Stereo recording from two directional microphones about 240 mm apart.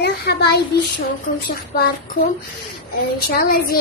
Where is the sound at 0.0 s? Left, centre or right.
Left.